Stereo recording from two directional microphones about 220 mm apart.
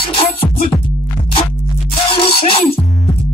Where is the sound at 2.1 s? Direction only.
25° left (ahead or behind).